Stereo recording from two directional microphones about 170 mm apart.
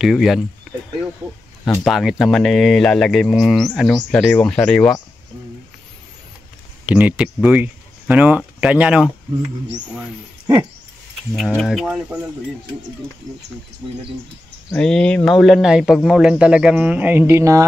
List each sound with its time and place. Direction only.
0.0 s speech: centre (ahead or behind)
1.9 s speech: centre (ahead or behind)
6.9 s speech: 10° right (ahead or behind)
11.3 s speech: centre (ahead or behind)
14.7 s speech: 5° left (ahead or behind); by 17.6 s 15° right (ahead or behind)